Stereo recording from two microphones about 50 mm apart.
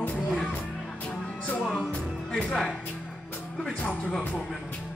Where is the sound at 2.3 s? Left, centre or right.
Centre.